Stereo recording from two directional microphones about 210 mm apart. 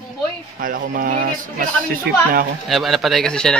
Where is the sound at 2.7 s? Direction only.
Centre (ahead or behind).